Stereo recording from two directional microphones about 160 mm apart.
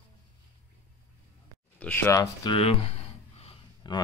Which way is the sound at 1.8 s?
10° left (ahead or behind).